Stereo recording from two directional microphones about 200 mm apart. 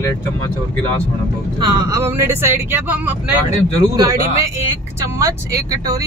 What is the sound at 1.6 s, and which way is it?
Speech, 15° right (ahead or behind).